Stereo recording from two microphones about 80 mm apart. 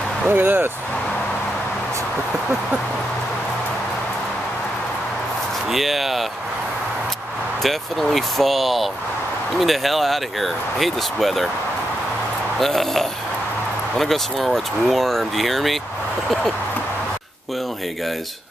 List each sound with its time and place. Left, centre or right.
0.3 s speech: right
5.7 s speech: centre
7.6 s speech: centre
12.5 s speech: centre